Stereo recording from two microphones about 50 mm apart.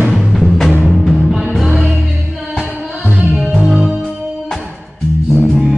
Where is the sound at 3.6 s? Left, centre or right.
Centre.